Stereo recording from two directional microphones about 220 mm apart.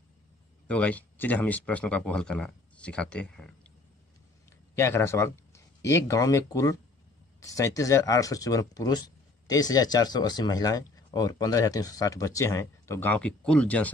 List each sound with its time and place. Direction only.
0.7 s speech: 5° left (ahead or behind)
4.7 s speech: 10° left (ahead or behind)